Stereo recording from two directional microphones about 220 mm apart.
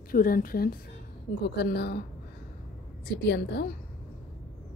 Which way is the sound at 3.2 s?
50° left (ahead or behind).